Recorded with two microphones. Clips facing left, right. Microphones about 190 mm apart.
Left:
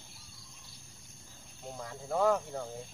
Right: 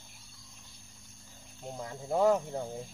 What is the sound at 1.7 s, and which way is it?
Cricket, 20° right (ahead or behind).